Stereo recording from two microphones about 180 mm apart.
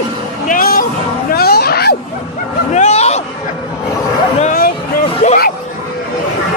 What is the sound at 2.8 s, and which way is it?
Hubbub, 40° left (ahead or behind).